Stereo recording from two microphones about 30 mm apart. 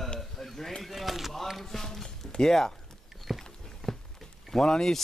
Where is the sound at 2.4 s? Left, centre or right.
Centre.